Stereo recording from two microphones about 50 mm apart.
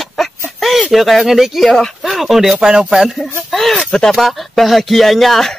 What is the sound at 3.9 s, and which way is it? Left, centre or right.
Speech, centre.